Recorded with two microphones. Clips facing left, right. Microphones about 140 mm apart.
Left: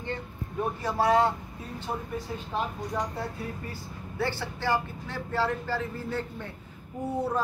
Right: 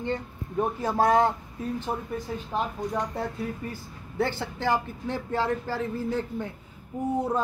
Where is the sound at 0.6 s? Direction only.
45° right (ahead or behind).